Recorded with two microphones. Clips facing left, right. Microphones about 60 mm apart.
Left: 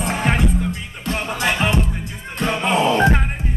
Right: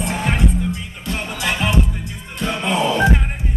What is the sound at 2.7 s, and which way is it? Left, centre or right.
Music, left.